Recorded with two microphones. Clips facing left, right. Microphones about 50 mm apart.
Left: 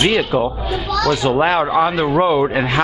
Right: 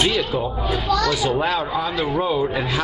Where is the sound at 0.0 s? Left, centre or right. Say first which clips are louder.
Left 5 dB; left.